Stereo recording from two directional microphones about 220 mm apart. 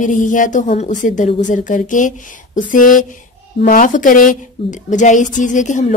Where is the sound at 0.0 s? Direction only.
35° left (ahead or behind).